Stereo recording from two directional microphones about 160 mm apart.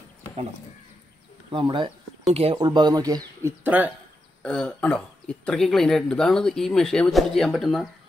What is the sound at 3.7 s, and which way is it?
Speech, 10° right (ahead or behind).